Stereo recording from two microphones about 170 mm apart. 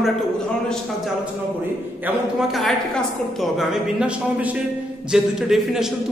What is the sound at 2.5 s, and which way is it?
A man's voice, centre (ahead or behind).